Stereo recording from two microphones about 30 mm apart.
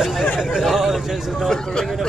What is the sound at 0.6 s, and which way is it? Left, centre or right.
Speech, centre.